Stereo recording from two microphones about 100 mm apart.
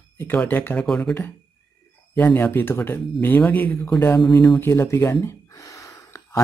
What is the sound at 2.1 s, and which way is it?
Speech, 15° left (ahead or behind).